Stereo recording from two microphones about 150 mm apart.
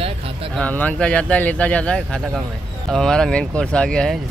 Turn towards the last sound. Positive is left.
turn(degrees=5)  # may be behind; listen again after turning